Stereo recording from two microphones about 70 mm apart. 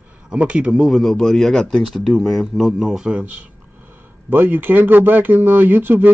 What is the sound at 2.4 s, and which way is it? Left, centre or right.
Speech, centre.